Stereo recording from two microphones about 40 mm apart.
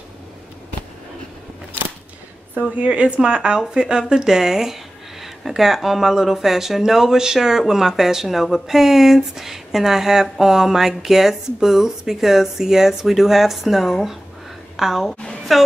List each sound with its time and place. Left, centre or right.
2.5 s speech: right
2.9 s a woman's voice: right; by 15.6 s centre